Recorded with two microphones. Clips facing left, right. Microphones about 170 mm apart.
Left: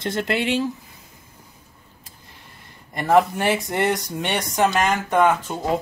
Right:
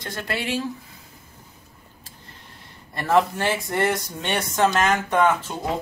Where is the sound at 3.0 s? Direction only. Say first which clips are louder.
Left 3 dB; 15° left (ahead or behind).